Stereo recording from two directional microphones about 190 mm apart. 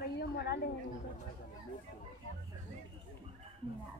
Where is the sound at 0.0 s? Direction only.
60° left (ahead or behind).